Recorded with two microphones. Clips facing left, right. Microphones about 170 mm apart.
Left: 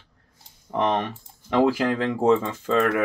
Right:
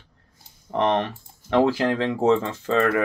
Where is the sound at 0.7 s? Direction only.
10° left (ahead or behind).